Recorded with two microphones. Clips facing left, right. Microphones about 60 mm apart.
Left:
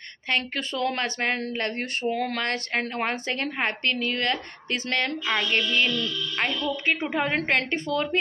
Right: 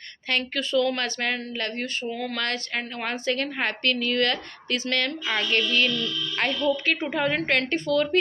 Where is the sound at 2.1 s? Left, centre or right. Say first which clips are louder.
Left 3 dB; left.